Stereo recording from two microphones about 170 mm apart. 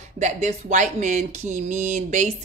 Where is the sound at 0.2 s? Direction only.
45° right (ahead or behind).